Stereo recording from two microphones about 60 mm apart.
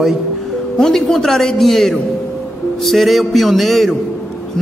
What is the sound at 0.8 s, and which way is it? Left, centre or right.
A man's voice, centre.